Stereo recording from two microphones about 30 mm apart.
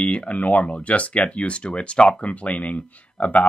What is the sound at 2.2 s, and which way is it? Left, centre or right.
Speech, left.